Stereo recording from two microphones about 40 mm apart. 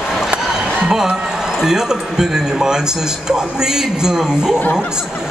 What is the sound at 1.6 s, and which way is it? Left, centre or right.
Speech, centre.